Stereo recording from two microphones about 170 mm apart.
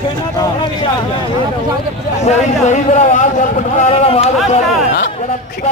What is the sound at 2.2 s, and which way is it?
Speech, 45° left (ahead or behind).